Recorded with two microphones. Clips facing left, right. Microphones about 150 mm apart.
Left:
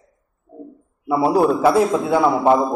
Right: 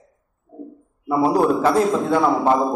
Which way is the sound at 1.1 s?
5° left (ahead or behind).